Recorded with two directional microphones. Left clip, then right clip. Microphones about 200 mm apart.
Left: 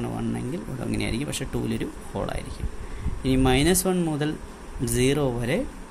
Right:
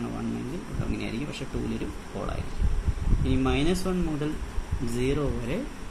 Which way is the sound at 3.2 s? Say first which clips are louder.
Left 5 dB; 60° left (ahead or behind).